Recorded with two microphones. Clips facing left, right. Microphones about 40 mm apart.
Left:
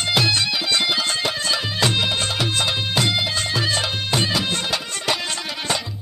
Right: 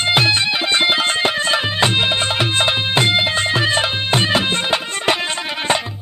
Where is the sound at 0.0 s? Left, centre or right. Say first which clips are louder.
Right 4 dB; right.